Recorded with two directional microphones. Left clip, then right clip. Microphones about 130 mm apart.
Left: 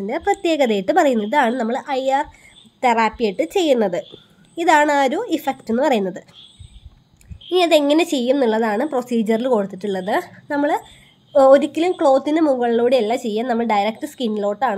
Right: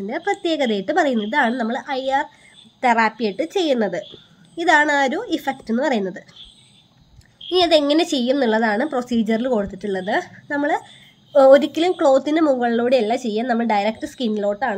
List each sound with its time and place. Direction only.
0.0 s a woman's voice: 35° left (ahead or behind)
7.4 s a woman's voice: 25° left (ahead or behind)
11.3 s a woman's voice: 15° left (ahead or behind)